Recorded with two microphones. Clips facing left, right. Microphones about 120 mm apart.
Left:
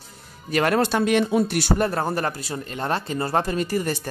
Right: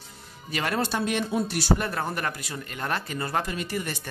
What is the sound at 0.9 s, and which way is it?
Speech, 80° left.